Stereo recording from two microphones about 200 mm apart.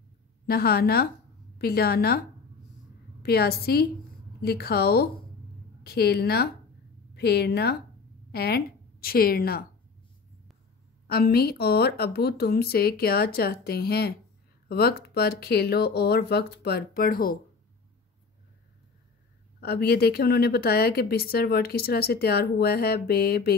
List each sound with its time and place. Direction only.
0.5 s a woman's voice: 50° left (ahead or behind)
11.1 s speech: 50° left (ahead or behind)
19.6 s speech: 50° left (ahead or behind)